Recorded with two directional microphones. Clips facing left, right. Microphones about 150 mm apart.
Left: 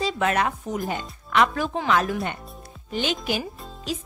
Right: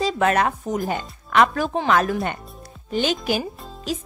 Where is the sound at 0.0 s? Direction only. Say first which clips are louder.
Right 4 dB; 45° right (ahead or behind).